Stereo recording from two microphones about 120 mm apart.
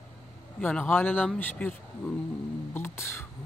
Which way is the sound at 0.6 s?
15° left (ahead or behind).